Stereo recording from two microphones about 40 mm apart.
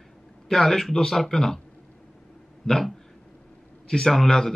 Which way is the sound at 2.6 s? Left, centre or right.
Centre.